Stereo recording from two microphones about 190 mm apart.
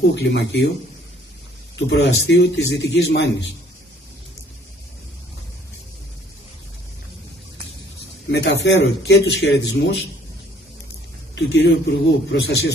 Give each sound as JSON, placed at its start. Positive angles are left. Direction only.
{"t": 0.0, "sound": "a man's voice", "side_deg": 60}
{"t": 1.9, "sound": "a man's voice", "side_deg": 65}
{"t": 8.3, "sound": "a man's voice", "side_deg": 65}
{"t": 11.3, "sound": "a man's voice", "side_deg": 65}